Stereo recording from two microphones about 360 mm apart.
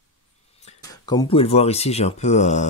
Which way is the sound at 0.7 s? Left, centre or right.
Centre.